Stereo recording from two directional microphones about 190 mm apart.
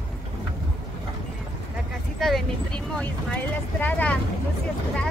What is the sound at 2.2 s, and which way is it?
Speech, centre (ahead or behind).